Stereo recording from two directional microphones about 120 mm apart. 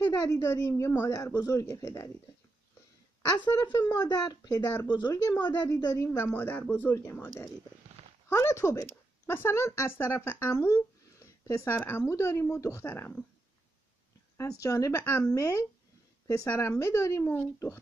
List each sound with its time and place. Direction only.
0.0 s a woman's voice: 35° left (ahead or behind)
4.0 s speech: 35° left (ahead or behind)
4.6 s speech: 15° left (ahead or behind)
5.1 s a woman's voice: 30° left (ahead or behind)
5.4 s speech: 15° left (ahead or behind)
5.7 s a woman's voice: 30° left (ahead or behind)
6.2 s a woman's voice: 15° left (ahead or behind)
8.3 s a woman's voice: 25° left (ahead or behind)
14.6 s a woman's voice: 25° left (ahead or behind)